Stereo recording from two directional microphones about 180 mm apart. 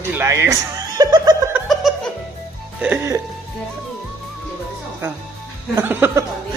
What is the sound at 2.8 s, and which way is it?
Speech, 10° right (ahead or behind).